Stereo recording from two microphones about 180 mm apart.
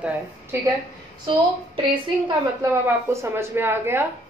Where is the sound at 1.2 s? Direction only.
30° right (ahead or behind).